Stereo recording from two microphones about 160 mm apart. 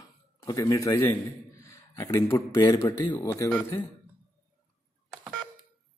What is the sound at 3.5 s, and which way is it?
Speech, 10° left (ahead or behind).